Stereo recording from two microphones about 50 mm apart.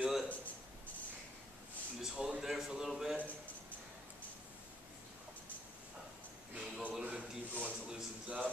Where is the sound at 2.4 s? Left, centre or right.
Centre.